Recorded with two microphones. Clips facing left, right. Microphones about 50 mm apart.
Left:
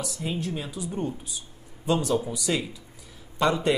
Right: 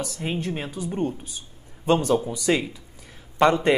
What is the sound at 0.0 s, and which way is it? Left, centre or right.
Speech, right.